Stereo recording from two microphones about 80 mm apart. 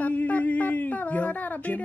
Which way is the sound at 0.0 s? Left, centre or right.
Centre.